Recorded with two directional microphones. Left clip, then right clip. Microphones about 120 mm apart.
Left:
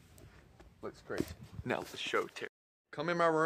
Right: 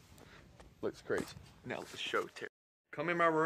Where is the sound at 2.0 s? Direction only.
30° left (ahead or behind).